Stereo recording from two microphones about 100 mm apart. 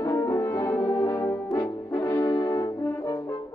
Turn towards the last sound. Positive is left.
turn(degrees=40)  # may be behind; listen again after turning